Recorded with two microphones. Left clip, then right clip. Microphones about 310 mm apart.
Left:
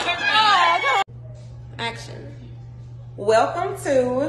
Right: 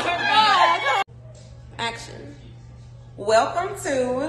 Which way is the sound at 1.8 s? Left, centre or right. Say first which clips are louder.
Even; centre.